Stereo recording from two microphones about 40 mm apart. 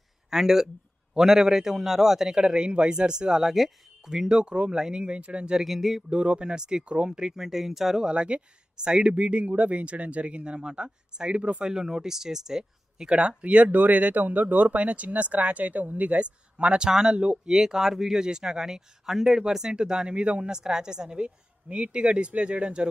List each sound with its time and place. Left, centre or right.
0.3 s speech: centre
3.5 s speech: centre
4.1 s speech: centre
4.7 s speech: centre
5.0 s a woman's voice: right
5.6 s a sound: centre
6.0 s a woman's voice: right; by 8.1 s centre
8.1 s a woman's voice: right
11.6 s speech: centre
13.1 s a woman's voice: right
17.5 s speech: centre; by 20.5 s right
20.5 s a woman's voice: centre